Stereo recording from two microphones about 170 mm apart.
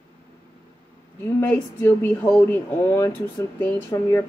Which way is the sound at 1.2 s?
10° left (ahead or behind).